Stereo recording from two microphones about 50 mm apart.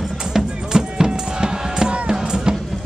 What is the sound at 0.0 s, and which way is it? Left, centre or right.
Music, centre.